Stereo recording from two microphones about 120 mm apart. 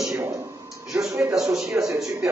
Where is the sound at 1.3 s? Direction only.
5° right (ahead or behind).